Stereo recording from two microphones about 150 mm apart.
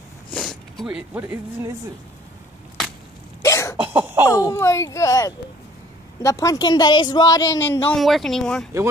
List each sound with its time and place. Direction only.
0.3 s speech: centre (ahead or behind); by 1.7 s 15° right (ahead or behind)
3.4 s cough: 20° left (ahead or behind)
3.8 s cough: 15° right (ahead or behind)
4.3 s a woman's voice: 20° left (ahead or behind)
8.0 s speech: centre (ahead or behind)